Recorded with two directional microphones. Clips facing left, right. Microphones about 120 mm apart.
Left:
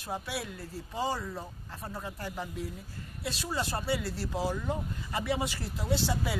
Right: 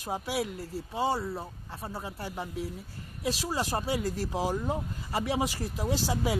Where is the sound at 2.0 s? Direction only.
5° right (ahead or behind).